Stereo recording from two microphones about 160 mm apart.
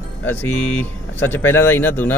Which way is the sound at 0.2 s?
10° left (ahead or behind).